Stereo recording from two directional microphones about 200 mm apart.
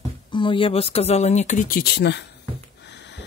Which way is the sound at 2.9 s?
60° left (ahead or behind).